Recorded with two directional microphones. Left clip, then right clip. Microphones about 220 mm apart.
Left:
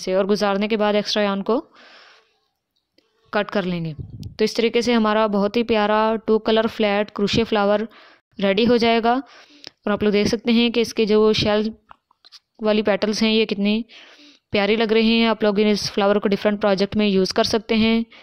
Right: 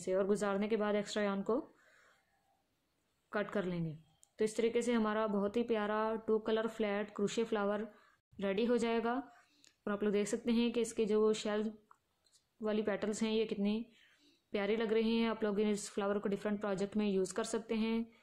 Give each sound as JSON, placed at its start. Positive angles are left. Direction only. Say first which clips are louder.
{"t": 0.0, "sound": "speech", "louder": "left 15 dB", "side_deg": 40}
{"t": 3.3, "sound": "a woman's voice", "louder": "left 15 dB", "side_deg": 40}